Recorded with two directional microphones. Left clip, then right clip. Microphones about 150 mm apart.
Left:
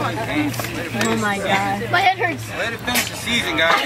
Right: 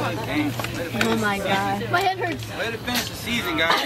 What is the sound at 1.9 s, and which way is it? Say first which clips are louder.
Speech: left 7 dB; 25° left (ahead or behind).